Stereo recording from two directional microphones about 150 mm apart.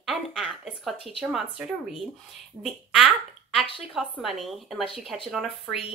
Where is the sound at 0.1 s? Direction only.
5° right (ahead or behind).